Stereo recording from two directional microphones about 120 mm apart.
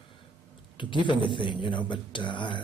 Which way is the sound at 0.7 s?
40° left (ahead or behind).